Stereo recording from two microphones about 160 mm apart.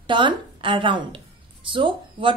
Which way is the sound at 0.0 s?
30° right (ahead or behind).